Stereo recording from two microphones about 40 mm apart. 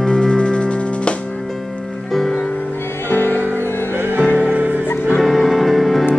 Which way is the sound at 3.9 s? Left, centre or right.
Right.